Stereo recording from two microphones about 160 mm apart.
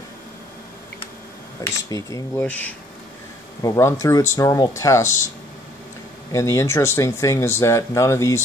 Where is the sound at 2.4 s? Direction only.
10° left (ahead or behind).